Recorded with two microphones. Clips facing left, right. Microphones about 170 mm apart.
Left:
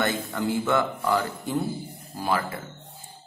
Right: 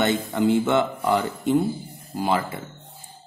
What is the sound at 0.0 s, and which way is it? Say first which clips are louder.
Speech: right 5 dB; 20° right (ahead or behind).